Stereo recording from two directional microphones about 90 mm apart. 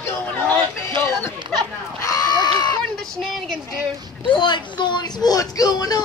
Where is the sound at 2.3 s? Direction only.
45° left (ahead or behind).